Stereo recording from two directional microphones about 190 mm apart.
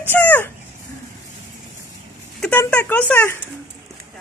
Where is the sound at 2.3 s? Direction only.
5° left (ahead or behind).